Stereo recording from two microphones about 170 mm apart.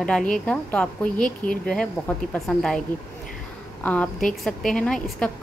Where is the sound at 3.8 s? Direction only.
10° left (ahead or behind).